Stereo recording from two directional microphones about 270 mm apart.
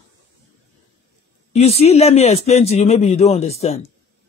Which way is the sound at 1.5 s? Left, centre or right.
Left.